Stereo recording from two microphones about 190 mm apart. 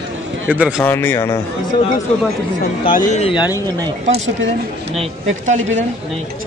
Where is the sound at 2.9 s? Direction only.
40° left (ahead or behind); by 3.6 s 25° left (ahead or behind).